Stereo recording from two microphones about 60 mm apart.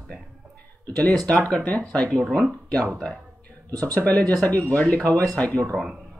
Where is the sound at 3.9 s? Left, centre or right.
Left.